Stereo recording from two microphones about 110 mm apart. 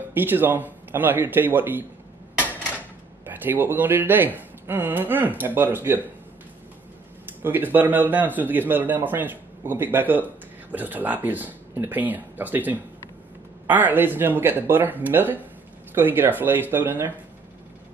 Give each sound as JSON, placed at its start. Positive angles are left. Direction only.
{"t": 0.1, "sound": "a man's voice", "side_deg": -20}
{"t": 3.3, "sound": "a man's voice", "side_deg": -15}
{"t": 7.4, "sound": "a man's voice", "side_deg": -20}